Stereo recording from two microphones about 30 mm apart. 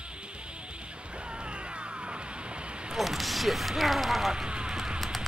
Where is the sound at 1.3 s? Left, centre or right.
Right.